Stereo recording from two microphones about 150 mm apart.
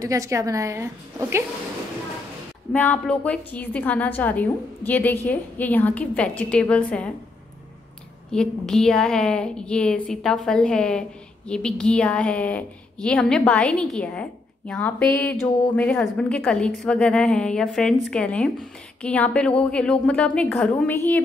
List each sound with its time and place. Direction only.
0.0 s a woman's voice: 20° right (ahead or behind)
2.7 s a woman's voice: 10° left (ahead or behind)
8.3 s a woman's voice: 5° left (ahead or behind)